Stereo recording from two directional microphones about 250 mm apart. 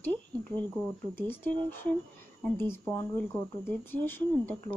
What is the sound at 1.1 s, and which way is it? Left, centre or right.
Speech, centre.